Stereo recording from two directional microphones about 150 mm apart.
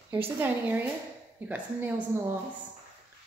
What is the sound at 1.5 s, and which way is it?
Speech, 10° right (ahead or behind).